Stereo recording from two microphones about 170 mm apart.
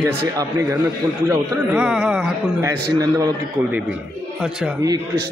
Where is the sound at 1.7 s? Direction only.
5° right (ahead or behind).